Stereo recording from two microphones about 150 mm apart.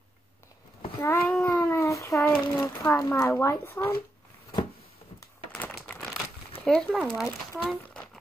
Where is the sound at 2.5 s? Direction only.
25° left (ahead or behind).